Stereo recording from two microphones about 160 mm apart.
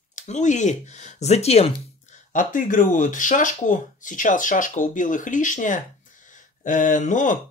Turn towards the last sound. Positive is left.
turn(degrees=50)  # may be behind; listen again after turning